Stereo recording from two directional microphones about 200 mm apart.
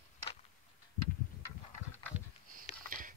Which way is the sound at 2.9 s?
45° right (ahead or behind).